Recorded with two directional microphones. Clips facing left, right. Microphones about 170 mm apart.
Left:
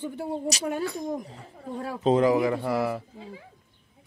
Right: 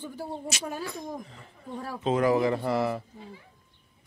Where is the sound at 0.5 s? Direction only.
35° left (ahead or behind).